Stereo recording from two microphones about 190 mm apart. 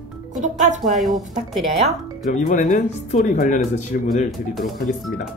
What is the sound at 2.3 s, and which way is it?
Speech, 40° left (ahead or behind).